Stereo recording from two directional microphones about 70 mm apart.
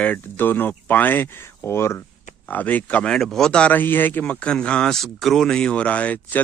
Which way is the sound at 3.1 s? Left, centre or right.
Centre.